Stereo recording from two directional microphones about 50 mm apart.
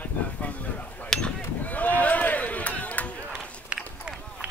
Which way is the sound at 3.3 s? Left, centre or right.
Centre.